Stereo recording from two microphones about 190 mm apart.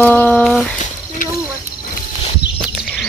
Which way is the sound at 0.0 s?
10° left (ahead or behind).